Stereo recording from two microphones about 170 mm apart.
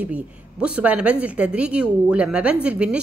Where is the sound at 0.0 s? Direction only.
5° right (ahead or behind).